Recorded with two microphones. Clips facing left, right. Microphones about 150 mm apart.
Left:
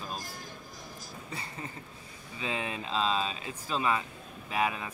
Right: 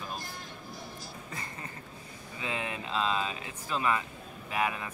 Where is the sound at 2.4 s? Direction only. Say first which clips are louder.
Left 1 dB; 25° left (ahead or behind).